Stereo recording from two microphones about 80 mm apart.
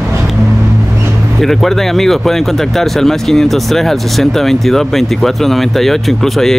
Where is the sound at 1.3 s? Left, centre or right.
Centre.